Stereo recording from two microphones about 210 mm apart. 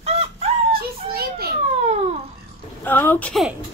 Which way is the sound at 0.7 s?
45° right (ahead or behind).